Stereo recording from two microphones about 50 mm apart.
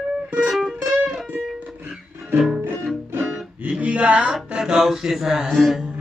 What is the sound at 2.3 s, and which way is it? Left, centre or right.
Music, centre.